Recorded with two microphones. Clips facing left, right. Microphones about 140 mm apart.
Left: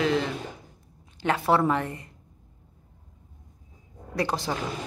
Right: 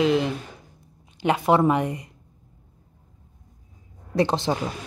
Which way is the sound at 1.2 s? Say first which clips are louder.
Right 4 dB; 15° right (ahead or behind).